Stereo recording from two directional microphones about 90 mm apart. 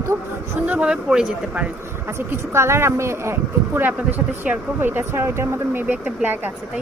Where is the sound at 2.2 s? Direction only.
30° right (ahead or behind).